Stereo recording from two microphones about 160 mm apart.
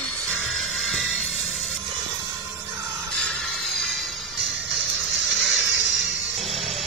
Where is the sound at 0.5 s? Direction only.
Centre (ahead or behind).